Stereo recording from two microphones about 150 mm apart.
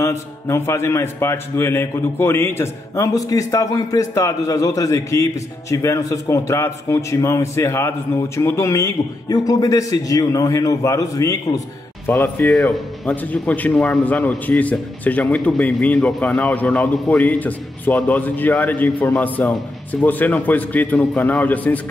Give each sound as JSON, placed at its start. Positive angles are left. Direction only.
{"t": 0.0, "sound": "a man's voice", "side_deg": 20}